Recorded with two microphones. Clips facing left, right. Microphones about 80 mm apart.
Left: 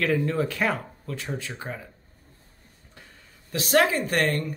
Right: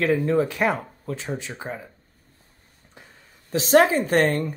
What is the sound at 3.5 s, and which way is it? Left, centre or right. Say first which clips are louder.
Speech: right 5 dB; right.